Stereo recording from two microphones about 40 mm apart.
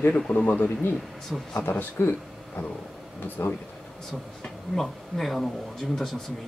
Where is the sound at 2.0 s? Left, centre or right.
Left.